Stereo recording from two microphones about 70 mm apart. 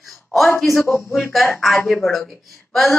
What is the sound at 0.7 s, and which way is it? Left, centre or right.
Speech, left.